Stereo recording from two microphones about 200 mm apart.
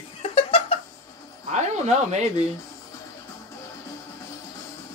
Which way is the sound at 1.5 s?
35° right (ahead or behind).